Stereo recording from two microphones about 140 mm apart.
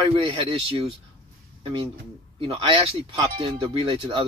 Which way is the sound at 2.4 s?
40° right (ahead or behind).